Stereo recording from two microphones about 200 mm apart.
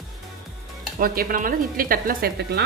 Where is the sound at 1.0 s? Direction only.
45° right (ahead or behind).